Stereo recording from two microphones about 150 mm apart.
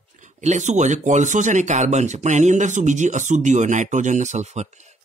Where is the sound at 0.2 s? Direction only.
50° right (ahead or behind).